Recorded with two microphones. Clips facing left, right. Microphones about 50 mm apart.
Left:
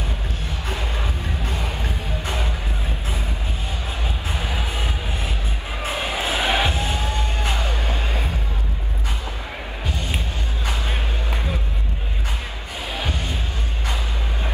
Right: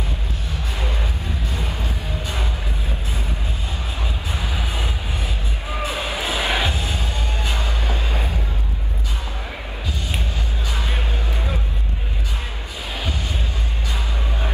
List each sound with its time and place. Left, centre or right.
0.5 s music: left
4.3 s music: left
12.9 s music: left